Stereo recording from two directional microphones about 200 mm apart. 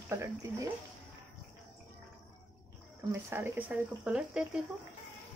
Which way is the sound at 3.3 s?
10° right (ahead or behind).